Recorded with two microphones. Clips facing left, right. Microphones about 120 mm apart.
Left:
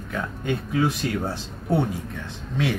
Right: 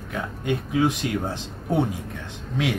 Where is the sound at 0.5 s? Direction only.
15° right (ahead or behind).